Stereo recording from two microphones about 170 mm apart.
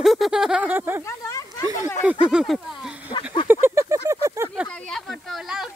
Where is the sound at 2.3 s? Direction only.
5° right (ahead or behind).